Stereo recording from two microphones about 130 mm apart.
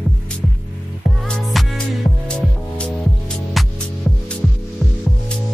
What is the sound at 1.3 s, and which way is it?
Music, 5° left (ahead or behind).